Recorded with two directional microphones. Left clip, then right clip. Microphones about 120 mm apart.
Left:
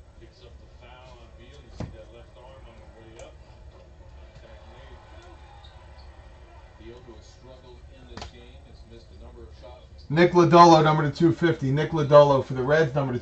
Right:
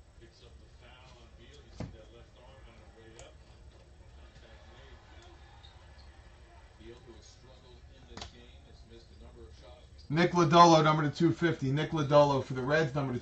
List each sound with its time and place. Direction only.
10.0 s speech: 5° left (ahead or behind)
11.0 s speech: 15° right (ahead or behind)
11.7 s speech: centre (ahead or behind)